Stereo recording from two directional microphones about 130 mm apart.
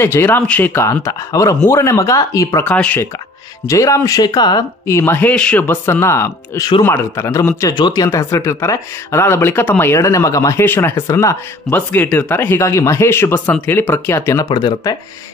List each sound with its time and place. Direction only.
0.0 s speech: 20° left (ahead or behind)
2.6 s speech: 10° left (ahead or behind)
3.6 s speech: 25° left (ahead or behind)
7.7 s speech: 30° left (ahead or behind)
11.7 s speech: 15° left (ahead or behind); by 15.0 s 30° left (ahead or behind)